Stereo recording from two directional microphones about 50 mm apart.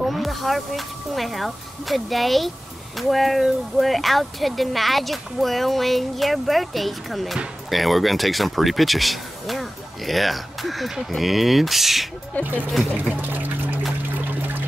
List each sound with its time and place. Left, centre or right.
0.0 s speech: centre
12.4 s speech: left
12.9 s trickle: right